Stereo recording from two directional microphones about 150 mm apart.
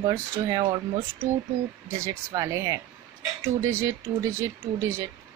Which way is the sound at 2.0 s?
20° right (ahead or behind).